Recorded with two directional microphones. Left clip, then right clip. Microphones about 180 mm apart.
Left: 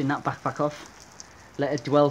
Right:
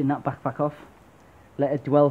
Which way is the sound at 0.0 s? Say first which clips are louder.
Right 1 dB; 35° right (ahead or behind).